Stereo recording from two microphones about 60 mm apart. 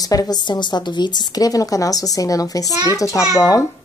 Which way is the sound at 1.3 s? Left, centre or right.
Left.